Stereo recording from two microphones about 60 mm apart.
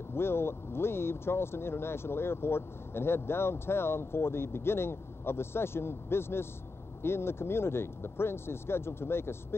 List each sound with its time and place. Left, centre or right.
0.1 s speech: left